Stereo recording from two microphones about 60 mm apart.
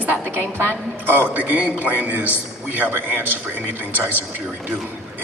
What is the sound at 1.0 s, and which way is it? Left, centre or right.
A man's voice, right.